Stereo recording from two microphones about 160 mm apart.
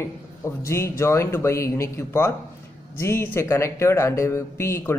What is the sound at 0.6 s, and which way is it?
Speech, 15° left (ahead or behind).